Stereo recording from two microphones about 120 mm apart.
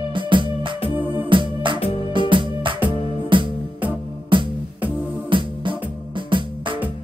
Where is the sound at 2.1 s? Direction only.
45° right (ahead or behind).